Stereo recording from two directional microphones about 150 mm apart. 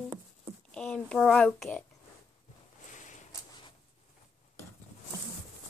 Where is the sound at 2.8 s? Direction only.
55° left (ahead or behind).